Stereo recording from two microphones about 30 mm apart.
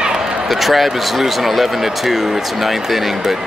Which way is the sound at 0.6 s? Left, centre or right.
Centre.